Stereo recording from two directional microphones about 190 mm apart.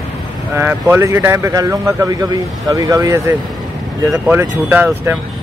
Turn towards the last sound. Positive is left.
turn(degrees=-10)  # may be behind; listen again after turning